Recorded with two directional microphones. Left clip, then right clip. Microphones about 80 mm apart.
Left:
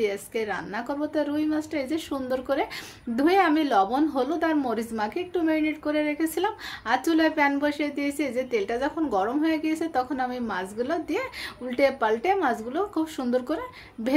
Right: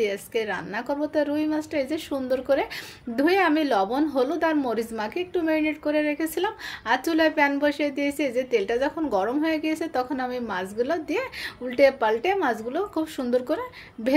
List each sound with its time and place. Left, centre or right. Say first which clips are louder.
0.0 s a woman's voice: right 1 dB; right